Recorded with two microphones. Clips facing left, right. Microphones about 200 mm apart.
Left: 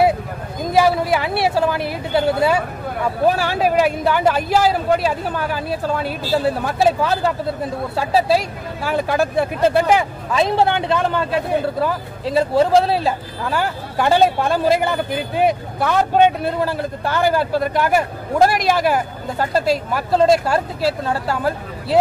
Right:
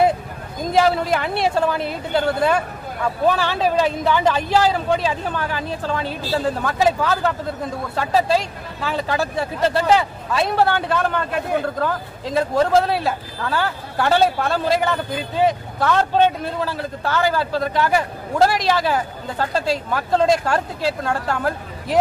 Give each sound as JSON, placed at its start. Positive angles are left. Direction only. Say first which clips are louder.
{"t": 0.7, "sound": "a man's voice", "louder": "left 2 dB", "side_deg": 5}